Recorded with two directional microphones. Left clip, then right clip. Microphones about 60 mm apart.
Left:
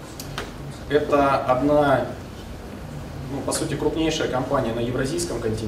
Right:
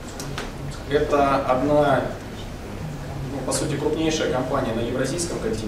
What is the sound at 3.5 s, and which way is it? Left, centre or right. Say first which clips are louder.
A man's voice: right 1 dB; right.